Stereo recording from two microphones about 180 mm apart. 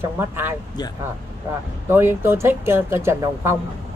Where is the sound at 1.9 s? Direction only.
15° right (ahead or behind).